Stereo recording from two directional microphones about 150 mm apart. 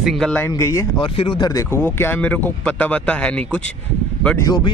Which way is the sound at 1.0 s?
35° left (ahead or behind).